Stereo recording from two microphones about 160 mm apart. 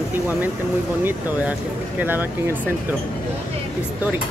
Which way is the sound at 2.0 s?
10° right (ahead or behind).